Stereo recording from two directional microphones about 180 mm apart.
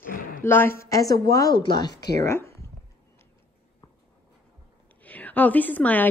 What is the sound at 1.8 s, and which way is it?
Speech, 70° left (ahead or behind).